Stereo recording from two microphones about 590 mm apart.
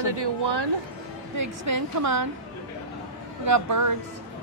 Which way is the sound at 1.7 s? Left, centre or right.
Right.